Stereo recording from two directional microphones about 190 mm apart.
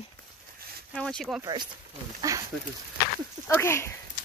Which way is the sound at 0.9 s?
5° left (ahead or behind).